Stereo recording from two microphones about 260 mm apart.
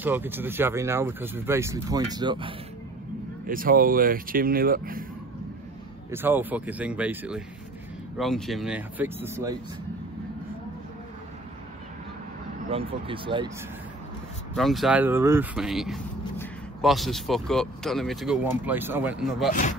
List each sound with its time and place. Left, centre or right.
0.0 s speech: centre
3.4 s speech: right
6.1 s speech: centre
12.6 s speech: right
14.5 s speech: centre